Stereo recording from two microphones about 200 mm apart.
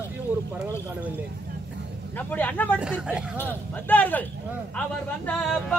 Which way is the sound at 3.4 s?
10° left (ahead or behind).